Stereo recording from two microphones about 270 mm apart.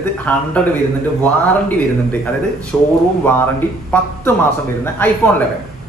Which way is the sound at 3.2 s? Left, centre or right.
Centre.